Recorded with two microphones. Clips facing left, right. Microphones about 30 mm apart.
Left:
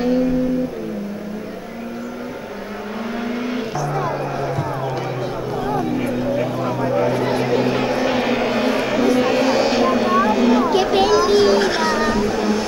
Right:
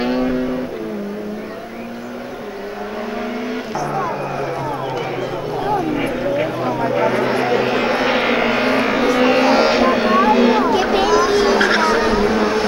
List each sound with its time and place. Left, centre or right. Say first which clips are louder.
0.0 s vehicle: left 1 dB; right
6.8 s vehicle: right 2 dB; right
11.5 s a sound: right 2 dB; right
11.8 s vehicle: right 3 dB; right